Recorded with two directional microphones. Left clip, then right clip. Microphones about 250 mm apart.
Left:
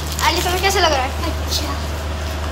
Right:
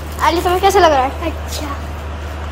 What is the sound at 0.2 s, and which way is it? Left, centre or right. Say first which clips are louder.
Speech: right 4 dB; right.